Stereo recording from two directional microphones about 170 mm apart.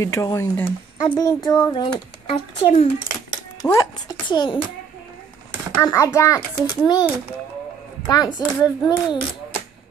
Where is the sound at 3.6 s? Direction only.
20° left (ahead or behind).